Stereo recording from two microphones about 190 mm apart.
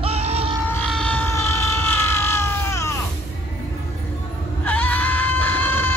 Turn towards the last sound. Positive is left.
turn(degrees=10)  # may be behind; listen again after turning